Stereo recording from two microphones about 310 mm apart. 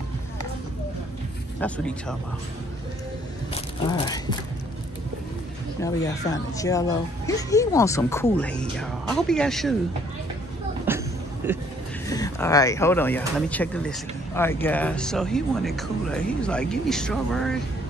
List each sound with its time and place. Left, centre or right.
1.6 s speech: centre
5.8 s speech: centre
10.9 s a sound: centre
11.4 s speech: centre
12.1 s speech: centre